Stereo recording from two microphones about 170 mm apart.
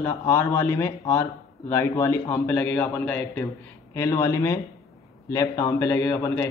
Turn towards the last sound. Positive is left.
turn(degrees=15)  # may be behind; listen again after turning